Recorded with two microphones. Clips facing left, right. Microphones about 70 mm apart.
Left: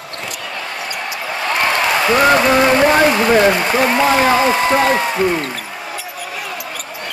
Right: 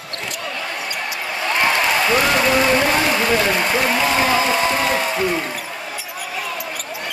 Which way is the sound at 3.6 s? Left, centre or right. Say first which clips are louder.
Left 3 dB; left.